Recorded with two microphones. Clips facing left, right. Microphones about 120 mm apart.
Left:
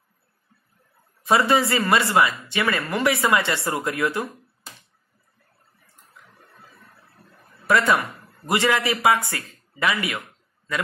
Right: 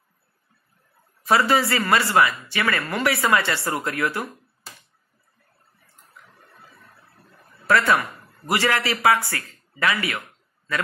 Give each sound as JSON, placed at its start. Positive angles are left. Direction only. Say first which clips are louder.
{"t": 1.2, "sound": "speech", "louder": "even", "side_deg": 20}
{"t": 7.6, "sound": "a man's voice", "louder": "even", "side_deg": 20}